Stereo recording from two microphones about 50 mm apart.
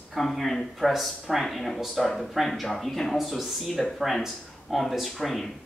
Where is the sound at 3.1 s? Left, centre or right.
Centre.